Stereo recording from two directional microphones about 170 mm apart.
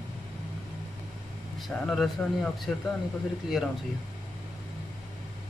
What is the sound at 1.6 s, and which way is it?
Speech, centre (ahead or behind).